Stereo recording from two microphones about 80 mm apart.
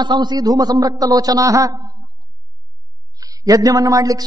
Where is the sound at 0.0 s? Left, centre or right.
Right.